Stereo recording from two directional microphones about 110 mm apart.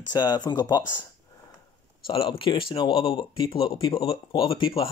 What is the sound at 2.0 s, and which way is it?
Speech, 55° left (ahead or behind).